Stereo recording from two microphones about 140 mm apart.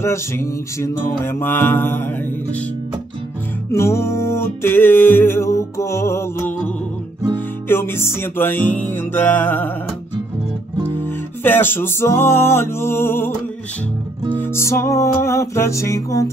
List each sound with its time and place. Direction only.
0.0 s music: 20° left (ahead or behind)
3.7 s music: 20° left (ahead or behind)
11.0 s music: 15° left (ahead or behind)
14.4 s music: 20° left (ahead or behind)